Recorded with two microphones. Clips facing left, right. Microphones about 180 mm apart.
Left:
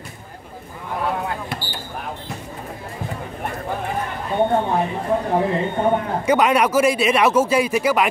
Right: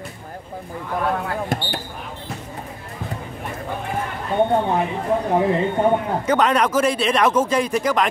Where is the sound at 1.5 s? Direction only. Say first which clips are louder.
Right 5 dB; 45° right (ahead or behind).